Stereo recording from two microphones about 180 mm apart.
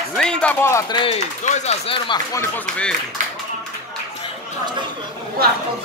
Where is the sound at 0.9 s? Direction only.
30° left (ahead or behind).